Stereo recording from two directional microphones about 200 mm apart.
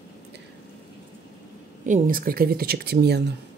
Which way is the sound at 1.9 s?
40° right (ahead or behind).